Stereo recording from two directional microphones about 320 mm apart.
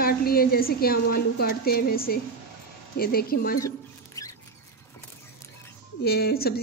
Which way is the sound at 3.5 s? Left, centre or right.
Centre.